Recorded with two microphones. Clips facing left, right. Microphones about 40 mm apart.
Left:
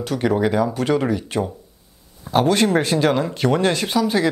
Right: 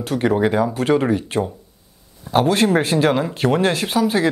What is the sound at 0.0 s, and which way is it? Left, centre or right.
Speech, centre.